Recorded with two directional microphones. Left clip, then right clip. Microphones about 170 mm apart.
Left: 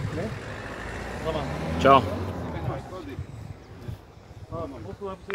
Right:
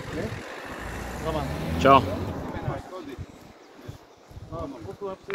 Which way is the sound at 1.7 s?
Centre (ahead or behind).